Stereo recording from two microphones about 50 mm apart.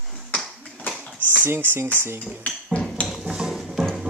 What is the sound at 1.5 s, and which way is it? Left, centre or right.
Speech, right.